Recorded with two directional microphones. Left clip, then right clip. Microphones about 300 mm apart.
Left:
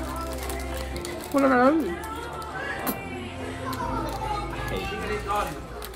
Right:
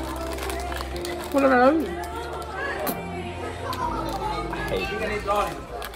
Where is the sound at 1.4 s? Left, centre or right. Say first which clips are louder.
Right 2 dB; centre.